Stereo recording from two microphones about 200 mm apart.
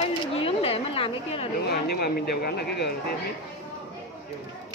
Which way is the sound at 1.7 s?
55° left (ahead or behind).